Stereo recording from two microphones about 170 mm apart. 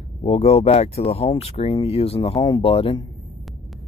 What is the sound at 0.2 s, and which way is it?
Speech, 35° left (ahead or behind).